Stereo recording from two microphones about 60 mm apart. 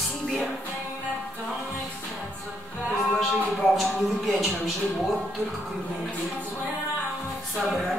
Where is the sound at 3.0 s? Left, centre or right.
Centre.